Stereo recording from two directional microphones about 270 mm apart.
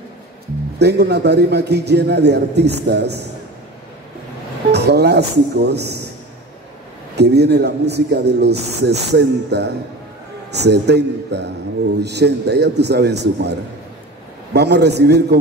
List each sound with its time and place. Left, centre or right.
0.7 s a man's voice: right
4.7 s a man's voice: right
7.2 s a man's voice: right
14.5 s a man's voice: right